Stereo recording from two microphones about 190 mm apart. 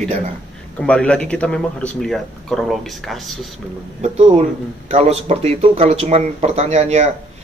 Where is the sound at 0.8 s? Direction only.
5° left (ahead or behind).